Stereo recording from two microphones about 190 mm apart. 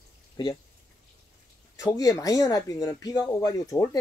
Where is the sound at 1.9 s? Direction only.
15° left (ahead or behind).